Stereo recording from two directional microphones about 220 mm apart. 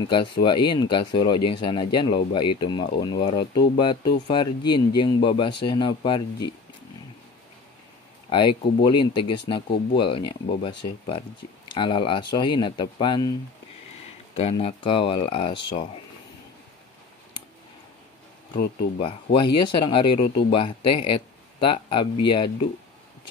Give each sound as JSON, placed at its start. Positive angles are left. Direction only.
{"t": 0.0, "sound": "speech", "side_deg": 20}
{"t": 8.3, "sound": "speech", "side_deg": 20}
{"t": 14.3, "sound": "speech", "side_deg": 25}
{"t": 18.9, "sound": "speech", "side_deg": 25}